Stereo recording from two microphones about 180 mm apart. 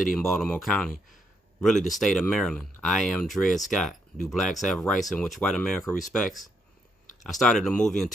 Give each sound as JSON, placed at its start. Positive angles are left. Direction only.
{"t": 0.1, "sound": "speech", "side_deg": 0}